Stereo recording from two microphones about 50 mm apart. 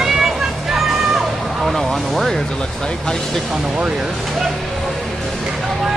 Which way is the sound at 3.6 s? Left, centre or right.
Centre.